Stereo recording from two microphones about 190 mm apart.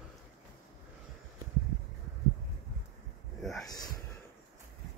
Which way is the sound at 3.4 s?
Centre (ahead or behind).